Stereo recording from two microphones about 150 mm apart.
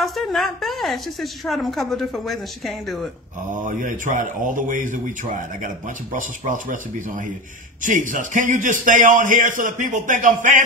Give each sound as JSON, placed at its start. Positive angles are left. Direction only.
{"t": 0.0, "sound": "a woman's voice", "side_deg": 0}
{"t": 3.4, "sound": "a man's voice", "side_deg": -60}